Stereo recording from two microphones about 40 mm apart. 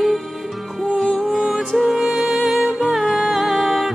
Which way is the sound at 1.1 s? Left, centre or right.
Centre.